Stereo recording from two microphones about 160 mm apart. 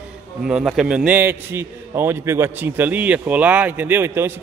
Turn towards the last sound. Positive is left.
turn(degrees=-15)  # may be behind; listen again after turning